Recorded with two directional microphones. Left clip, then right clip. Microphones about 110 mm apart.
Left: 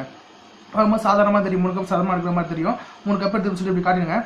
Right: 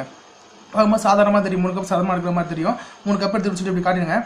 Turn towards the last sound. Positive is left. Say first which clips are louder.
# even
turn(degrees=-20)  # may be behind; listen again after turning